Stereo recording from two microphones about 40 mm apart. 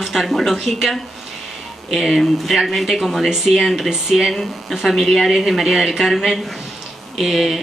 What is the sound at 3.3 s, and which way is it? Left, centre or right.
Speech, centre.